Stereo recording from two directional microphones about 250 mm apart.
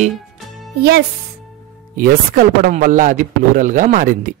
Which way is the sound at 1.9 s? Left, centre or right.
Right.